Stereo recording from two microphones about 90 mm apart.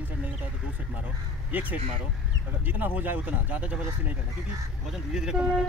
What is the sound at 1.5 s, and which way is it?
Speech, 20° right (ahead or behind).